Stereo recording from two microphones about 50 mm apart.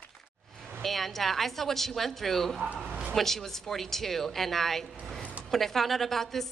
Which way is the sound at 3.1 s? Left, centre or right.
Centre.